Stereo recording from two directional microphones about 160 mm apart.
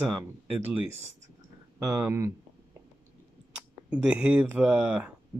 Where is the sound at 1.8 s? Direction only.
20° right (ahead or behind).